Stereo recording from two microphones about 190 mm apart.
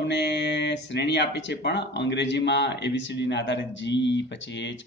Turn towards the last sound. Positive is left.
turn(degrees=70)  # may be behind; listen again after turning